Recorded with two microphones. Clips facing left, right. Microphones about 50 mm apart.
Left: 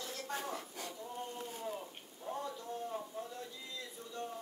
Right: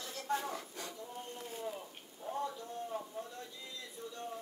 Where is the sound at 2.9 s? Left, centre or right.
Centre.